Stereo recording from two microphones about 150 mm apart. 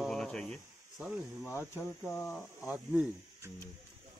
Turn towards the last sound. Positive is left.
turn(degrees=-10)  # may be behind; listen again after turning